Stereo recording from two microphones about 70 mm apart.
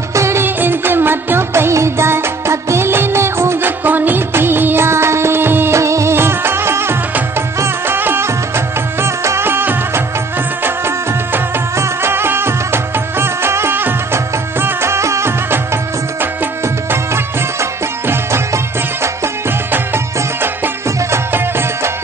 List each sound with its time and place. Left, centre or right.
0.1 s music: right
5.8 s music: right
11.7 s music: right
21.1 s music: right